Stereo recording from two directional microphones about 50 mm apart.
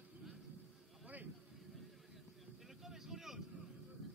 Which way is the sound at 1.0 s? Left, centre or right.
Right.